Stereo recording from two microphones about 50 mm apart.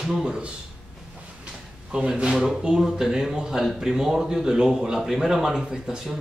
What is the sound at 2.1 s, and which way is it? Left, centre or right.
A man's voice, centre.